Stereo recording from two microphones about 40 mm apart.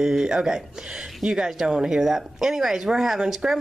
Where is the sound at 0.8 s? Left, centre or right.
Centre.